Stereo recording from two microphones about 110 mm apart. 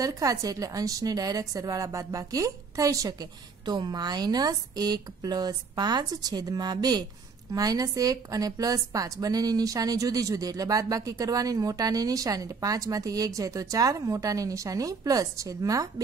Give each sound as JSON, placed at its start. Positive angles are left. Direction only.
{"t": 0.0, "sound": "a woman's voice", "side_deg": -30}